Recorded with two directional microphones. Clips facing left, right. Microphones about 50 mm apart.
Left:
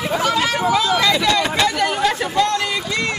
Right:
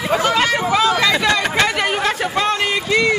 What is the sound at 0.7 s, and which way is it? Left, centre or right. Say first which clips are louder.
Chatter: right 3 dB; right.